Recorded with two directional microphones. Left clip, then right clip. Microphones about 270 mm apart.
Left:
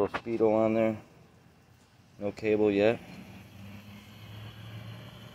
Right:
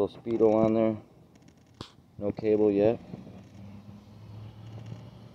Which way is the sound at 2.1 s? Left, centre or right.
Centre.